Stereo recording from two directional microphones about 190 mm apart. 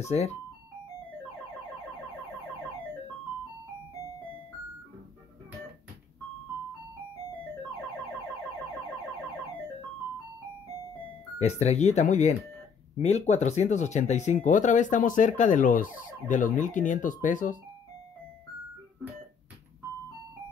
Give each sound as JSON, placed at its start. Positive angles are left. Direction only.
{"t": 0.1, "sound": "speech", "side_deg": 35}
{"t": 11.3, "sound": "speech", "side_deg": 35}